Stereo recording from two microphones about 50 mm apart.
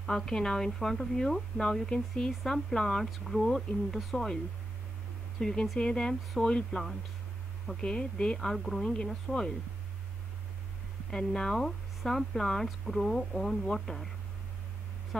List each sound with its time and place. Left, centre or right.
0.0 s speech: centre
5.4 s speech: centre
8.4 s speech: centre
8.8 s speech: centre
11.1 s speech: centre